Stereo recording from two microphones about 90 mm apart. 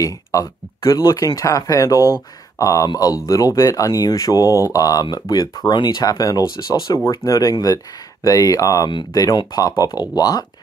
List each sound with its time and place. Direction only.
0.0 s speech: 40° left (ahead or behind)